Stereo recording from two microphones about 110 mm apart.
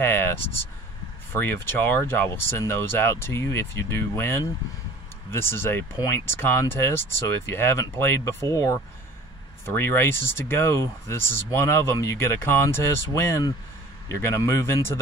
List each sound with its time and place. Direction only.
0.0 s speech: 20° left (ahead or behind)
9.8 s speech: 20° left (ahead or behind)